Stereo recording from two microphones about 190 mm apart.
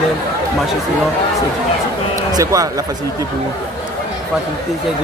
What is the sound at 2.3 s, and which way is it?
Speech, 20° right (ahead or behind).